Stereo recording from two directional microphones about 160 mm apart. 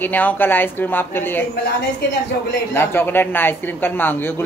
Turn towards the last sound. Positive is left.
turn(degrees=15)  # may be behind; listen again after turning